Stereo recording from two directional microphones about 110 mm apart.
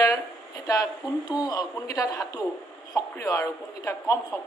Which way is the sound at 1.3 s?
35° left (ahead or behind).